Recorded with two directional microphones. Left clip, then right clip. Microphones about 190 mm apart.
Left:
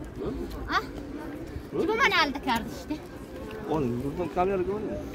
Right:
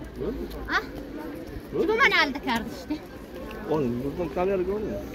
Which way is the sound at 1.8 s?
30° left (ahead or behind).